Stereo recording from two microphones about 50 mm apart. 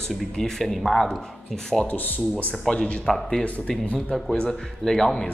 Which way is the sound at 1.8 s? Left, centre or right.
Left.